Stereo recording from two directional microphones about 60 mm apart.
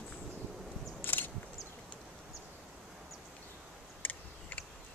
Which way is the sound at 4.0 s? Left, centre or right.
Left.